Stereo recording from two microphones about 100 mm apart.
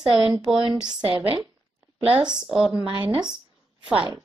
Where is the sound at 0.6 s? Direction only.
50° right (ahead or behind).